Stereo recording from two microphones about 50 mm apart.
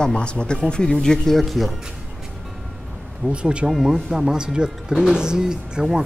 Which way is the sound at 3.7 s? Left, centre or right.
Centre.